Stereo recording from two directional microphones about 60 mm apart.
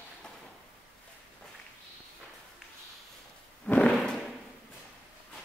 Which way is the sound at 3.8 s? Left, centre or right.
Centre.